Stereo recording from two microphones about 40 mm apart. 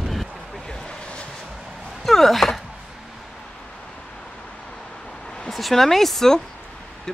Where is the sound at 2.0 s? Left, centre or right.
Centre.